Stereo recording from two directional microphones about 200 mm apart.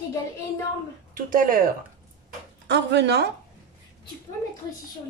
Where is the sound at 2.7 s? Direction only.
60° right (ahead or behind).